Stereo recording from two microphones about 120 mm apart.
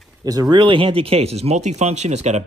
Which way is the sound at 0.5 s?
40° right (ahead or behind).